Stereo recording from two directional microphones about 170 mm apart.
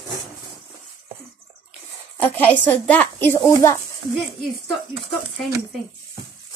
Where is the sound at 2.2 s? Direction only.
10° left (ahead or behind).